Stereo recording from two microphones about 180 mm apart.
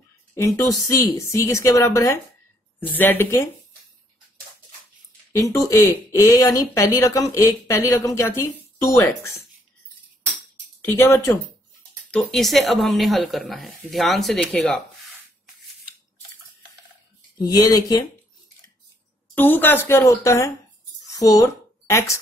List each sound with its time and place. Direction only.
0.3 s speech: 15° left (ahead or behind)
5.3 s speech: 15° left (ahead or behind)
10.8 s speech: 10° left (ahead or behind)
17.4 s speech: 20° left (ahead or behind)
19.3 s speech: 10° left (ahead or behind)
21.1 s a sound: 20° left (ahead or behind)